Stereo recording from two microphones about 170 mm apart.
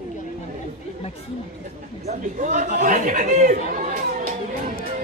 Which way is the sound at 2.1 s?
45° right (ahead or behind).